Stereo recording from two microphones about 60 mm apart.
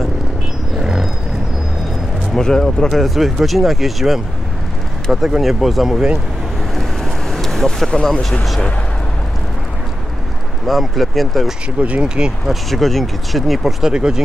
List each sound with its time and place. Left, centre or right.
0.7 s roaring cats: centre
2.3 s speech: centre
6.8 s vehicle: centre
10.7 s speech: centre
11.8 s speech: centre
12.4 s speech: centre